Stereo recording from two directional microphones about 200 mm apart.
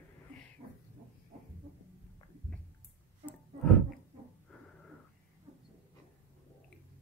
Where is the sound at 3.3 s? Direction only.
5° left (ahead or behind).